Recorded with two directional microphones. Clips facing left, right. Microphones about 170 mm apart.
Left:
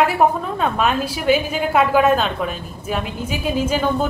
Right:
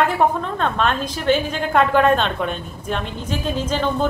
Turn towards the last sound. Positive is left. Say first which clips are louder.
# left 2 dB
turn(degrees=10)  # may be behind; listen again after turning